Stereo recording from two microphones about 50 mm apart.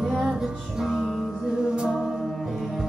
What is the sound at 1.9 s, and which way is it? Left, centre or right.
Music, centre.